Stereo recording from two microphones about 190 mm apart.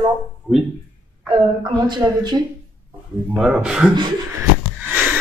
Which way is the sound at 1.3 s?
25° right (ahead or behind).